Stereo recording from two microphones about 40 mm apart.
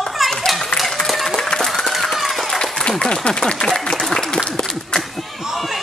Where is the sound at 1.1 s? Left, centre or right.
Centre.